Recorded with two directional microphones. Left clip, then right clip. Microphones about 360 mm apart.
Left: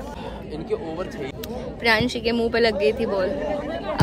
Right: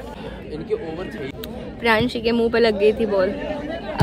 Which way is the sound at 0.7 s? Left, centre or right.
Centre.